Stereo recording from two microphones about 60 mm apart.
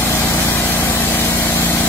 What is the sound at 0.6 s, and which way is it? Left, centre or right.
Vehicle, left.